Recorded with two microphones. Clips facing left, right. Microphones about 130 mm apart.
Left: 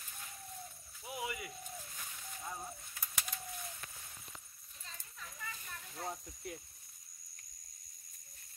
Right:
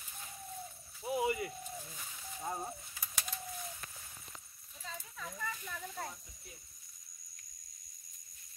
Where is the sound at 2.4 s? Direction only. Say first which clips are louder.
Right 6 dB; 40° right (ahead or behind).